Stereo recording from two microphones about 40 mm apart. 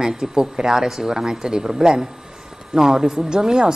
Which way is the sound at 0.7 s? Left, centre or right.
Centre.